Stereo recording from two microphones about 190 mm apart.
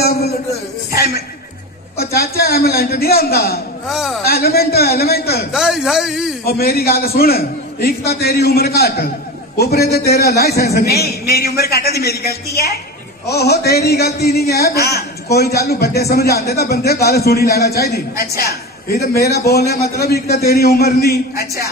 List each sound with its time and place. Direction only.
0.9 s speech: 55° left (ahead or behind)
3.9 s a man's voice: centre (ahead or behind)
4.3 s speech: 55° left (ahead or behind)
5.5 s a man's voice: 5° right (ahead or behind)
6.4 s a man's voice: 55° left (ahead or behind)